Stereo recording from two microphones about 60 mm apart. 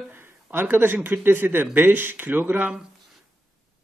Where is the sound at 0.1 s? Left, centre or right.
Right.